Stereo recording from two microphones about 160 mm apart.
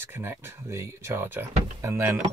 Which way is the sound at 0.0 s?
15° right (ahead or behind).